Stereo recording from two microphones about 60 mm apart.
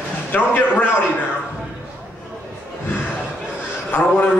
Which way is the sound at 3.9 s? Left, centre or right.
Left.